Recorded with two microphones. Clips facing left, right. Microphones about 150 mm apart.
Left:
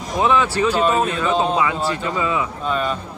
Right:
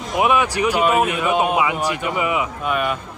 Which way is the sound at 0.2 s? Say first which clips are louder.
Even; 15° right (ahead or behind).